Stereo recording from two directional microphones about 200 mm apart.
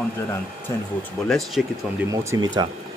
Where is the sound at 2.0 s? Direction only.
15° right (ahead or behind).